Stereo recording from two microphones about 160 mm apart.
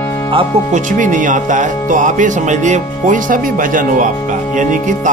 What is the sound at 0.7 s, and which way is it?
Speech, 55° right (ahead or behind).